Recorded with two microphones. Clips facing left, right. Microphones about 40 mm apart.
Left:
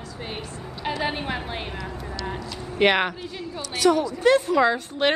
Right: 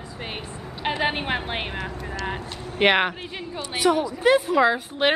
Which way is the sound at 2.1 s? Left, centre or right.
Right.